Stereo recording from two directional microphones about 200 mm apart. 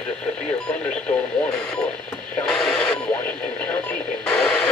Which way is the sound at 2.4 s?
5° left (ahead or behind).